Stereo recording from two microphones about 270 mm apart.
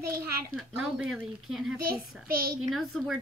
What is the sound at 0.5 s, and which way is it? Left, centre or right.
Speech, centre.